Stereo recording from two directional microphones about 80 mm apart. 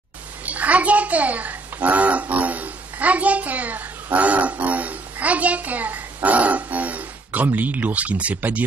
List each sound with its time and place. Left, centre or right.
0.5 s a child's voice: centre